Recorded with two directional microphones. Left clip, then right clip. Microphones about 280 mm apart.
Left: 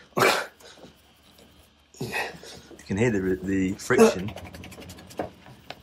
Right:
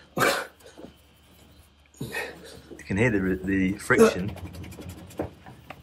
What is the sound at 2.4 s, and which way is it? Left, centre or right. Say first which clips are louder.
Speech: even; centre.